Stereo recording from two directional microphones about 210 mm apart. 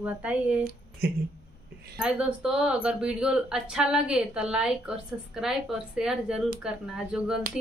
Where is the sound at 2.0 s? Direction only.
5° right (ahead or behind).